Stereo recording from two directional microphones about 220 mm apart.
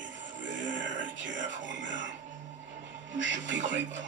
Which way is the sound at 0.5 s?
55° right (ahead or behind).